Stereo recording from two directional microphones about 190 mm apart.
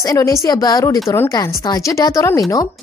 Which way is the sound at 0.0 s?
15° left (ahead or behind).